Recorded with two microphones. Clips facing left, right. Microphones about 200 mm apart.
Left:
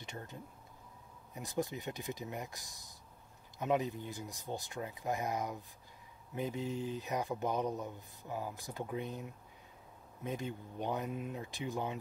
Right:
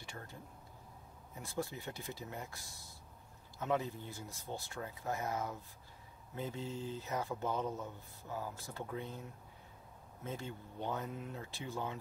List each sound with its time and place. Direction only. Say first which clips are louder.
0.0 s speech: left 3 dB; 20° left (ahead or behind)